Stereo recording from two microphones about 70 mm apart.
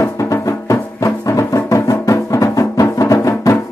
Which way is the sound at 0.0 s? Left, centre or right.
Left.